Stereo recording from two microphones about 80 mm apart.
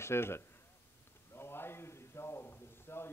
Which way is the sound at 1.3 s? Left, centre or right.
Left.